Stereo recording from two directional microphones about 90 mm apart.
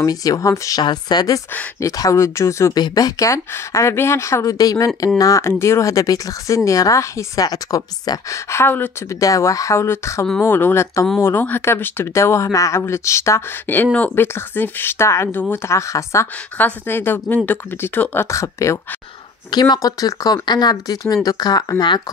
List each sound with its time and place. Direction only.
0.0 s speech: 40° left (ahead or behind)
0.8 s speech: 50° left (ahead or behind); by 2.7 s 30° left (ahead or behind)
2.7 s speech: 45° left (ahead or behind)
8.5 s speech: 25° left (ahead or behind)
9.1 s speech: 35° left (ahead or behind)
16.5 s speech: 20° left (ahead or behind)
19.5 s speech: 50° left (ahead or behind)